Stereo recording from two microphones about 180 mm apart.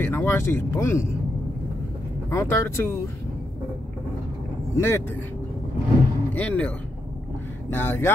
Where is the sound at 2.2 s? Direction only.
15° left (ahead or behind).